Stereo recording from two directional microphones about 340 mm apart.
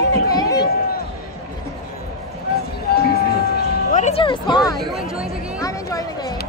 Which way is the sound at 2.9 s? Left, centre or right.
Left.